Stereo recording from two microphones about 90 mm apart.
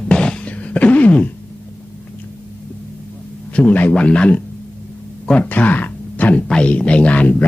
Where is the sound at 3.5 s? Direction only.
15° left (ahead or behind).